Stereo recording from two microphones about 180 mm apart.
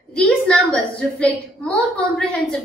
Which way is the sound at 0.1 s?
5° left (ahead or behind).